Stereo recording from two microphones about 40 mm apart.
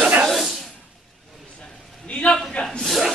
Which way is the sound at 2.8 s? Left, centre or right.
Centre.